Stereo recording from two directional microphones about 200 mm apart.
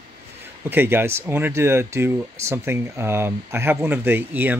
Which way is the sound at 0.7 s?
10° right (ahead or behind).